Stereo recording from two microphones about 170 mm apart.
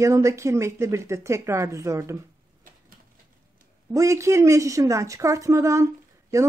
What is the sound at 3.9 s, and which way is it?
Speech, 20° right (ahead or behind).